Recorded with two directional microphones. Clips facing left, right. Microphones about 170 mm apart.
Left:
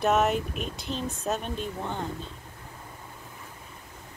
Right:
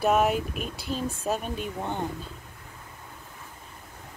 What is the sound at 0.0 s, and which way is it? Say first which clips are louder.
Speech: right 1 dB; 5° right (ahead or behind).